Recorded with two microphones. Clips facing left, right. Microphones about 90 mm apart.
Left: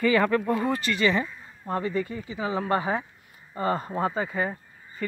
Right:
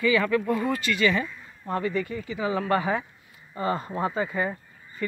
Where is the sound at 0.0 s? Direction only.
45° left (ahead or behind).